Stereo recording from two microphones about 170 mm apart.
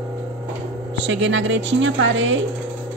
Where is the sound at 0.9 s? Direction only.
90° right.